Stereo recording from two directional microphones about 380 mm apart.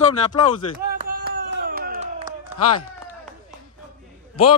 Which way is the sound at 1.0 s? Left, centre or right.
Right.